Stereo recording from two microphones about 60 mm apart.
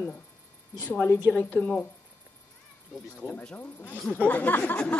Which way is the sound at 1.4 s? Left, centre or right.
Left.